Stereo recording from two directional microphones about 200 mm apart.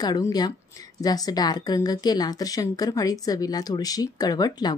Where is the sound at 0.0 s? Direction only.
20° left (ahead or behind).